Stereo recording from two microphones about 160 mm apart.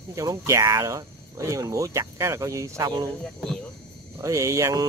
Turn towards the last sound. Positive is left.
turn(degrees=-20)  # may be behind; listen again after turning